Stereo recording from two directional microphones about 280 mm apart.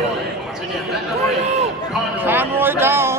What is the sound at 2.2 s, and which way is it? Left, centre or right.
Speech, centre.